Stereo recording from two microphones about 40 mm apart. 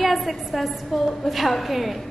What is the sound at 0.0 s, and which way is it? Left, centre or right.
A woman's voice, centre.